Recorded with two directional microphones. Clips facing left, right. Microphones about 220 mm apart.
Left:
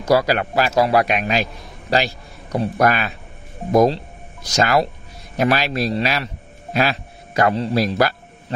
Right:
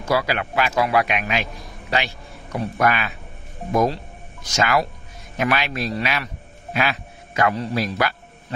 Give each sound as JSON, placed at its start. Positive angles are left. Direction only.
{"t": 0.0, "sound": "a man's voice", "side_deg": 40}